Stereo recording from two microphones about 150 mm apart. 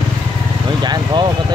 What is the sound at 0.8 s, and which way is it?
Speech, 30° right (ahead or behind).